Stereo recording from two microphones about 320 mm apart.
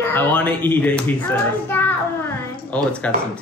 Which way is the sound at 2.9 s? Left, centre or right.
Centre.